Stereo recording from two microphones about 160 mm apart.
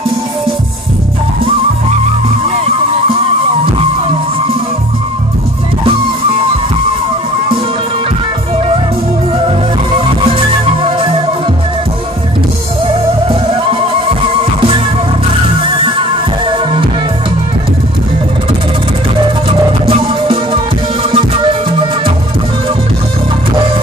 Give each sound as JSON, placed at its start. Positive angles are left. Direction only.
{"t": 9.9, "sound": "music", "side_deg": -35}
{"t": 12.8, "sound": "music", "side_deg": -35}
{"t": 16.4, "sound": "music", "side_deg": -30}
{"t": 19.9, "sound": "music", "side_deg": -35}